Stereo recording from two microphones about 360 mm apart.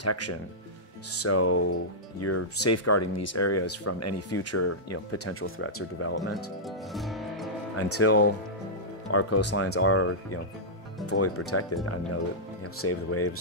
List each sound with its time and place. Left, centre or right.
0.0 s speech: left
6.9 s music: centre
7.7 s speech: left
12.8 s speech: left